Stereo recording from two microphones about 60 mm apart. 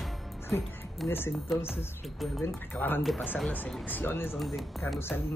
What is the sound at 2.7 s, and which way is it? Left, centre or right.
Speech, left.